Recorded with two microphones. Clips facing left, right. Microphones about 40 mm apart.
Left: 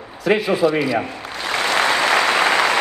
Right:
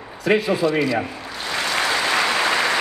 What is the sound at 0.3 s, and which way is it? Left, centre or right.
Speech, centre.